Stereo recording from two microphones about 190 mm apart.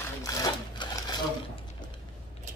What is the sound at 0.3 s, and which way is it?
Sewing machine, 20° left (ahead or behind).